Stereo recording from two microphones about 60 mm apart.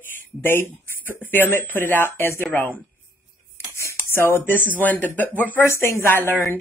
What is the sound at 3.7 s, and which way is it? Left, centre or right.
A woman's voice, left.